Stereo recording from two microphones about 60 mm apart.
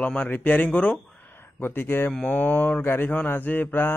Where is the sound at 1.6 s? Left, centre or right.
Left.